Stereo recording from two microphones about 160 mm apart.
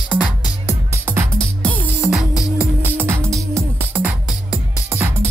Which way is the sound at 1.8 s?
5° right (ahead or behind).